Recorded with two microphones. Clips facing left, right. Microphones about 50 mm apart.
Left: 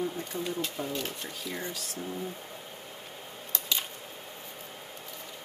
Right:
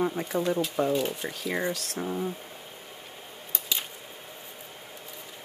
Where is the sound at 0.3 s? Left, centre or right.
Right.